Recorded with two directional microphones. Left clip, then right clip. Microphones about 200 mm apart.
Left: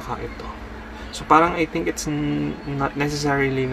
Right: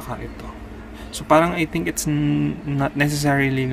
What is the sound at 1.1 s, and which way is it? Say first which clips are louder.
A man's voice: even; 60° right (ahead or behind).